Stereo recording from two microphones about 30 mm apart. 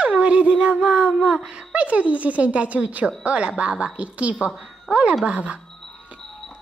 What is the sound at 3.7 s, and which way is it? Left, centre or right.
A woman's voice, right.